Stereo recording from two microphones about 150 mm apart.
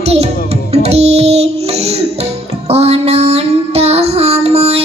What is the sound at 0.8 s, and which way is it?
Music, 45° right (ahead or behind).